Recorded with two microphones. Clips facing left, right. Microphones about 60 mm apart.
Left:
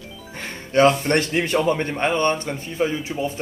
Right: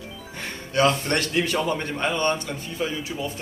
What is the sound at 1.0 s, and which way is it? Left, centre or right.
Speech, left.